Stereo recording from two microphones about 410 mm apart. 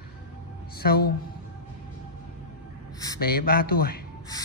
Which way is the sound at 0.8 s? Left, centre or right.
Left.